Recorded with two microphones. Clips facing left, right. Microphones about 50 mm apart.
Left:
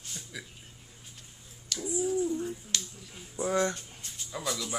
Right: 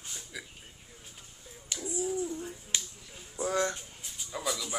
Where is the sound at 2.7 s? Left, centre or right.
Centre.